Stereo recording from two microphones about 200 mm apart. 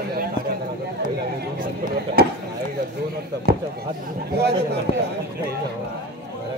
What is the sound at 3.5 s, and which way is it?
A man's voice, 50° right (ahead or behind).